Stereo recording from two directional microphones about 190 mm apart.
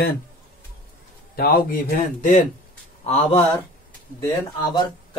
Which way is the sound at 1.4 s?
50° left (ahead or behind).